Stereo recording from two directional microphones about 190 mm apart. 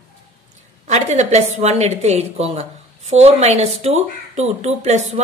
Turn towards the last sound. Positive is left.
turn(degrees=-35)  # may be behind; listen again after turning